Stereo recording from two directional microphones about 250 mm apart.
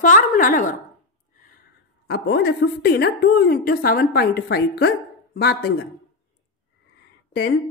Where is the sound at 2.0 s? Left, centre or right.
Left.